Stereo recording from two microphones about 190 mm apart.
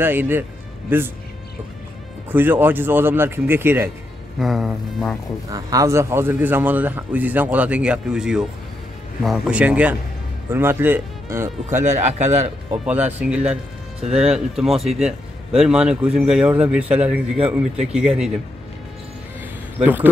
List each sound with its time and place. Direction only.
0.0 s a man's voice: 10° right (ahead or behind)
2.3 s speech: 10° right (ahead or behind)
4.4 s speech: centre (ahead or behind)
5.5 s speech: 20° right (ahead or behind)
11.7 s speech: 40° right (ahead or behind)
12.8 s speech: 5° right (ahead or behind)
19.8 s speech: 10° right (ahead or behind)